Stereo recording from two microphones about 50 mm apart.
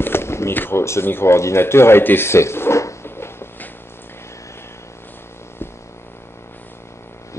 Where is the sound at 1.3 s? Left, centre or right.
Left.